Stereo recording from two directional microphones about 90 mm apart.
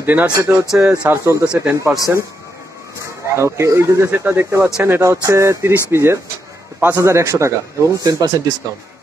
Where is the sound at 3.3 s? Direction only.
30° right (ahead or behind).